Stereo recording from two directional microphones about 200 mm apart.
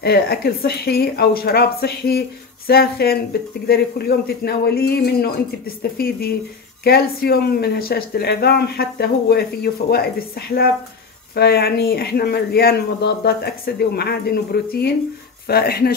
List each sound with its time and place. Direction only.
0.0 s speech: 50° left (ahead or behind)
11.3 s speech: 50° left (ahead or behind)